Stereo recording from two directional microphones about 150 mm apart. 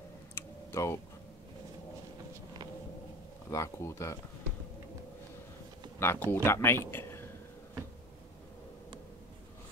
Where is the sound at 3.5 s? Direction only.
20° left (ahead or behind).